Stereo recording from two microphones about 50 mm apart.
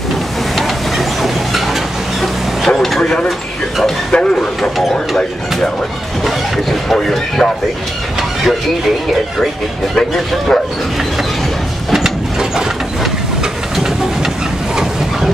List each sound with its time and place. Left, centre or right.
0.6 s train: centre
3.0 s speech: centre
3.3 s a sound: centre
4.1 s a sound: centre
6.2 s speech: centre
8.2 s speech: centre
9.9 s speech: centre
11.9 s a sound: centre
13.7 s steam: centre